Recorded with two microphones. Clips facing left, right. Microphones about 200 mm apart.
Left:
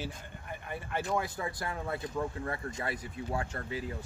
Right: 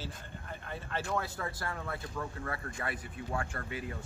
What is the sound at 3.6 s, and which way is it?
Speech, 30° left (ahead or behind).